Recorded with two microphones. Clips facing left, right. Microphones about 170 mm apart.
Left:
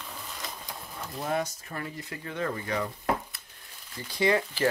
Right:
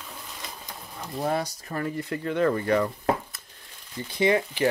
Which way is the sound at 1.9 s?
60° right (ahead or behind).